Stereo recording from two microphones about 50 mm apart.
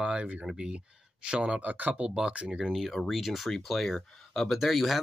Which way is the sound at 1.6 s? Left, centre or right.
Right.